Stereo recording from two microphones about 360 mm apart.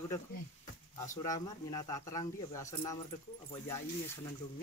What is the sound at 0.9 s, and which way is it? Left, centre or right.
Speech, centre.